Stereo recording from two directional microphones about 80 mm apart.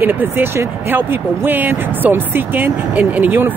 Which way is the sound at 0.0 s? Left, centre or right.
Right.